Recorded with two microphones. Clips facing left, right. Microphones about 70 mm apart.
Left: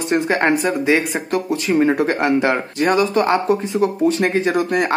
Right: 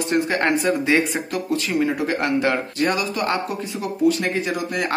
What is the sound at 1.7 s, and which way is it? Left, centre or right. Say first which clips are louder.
Speech: left 7 dB; left.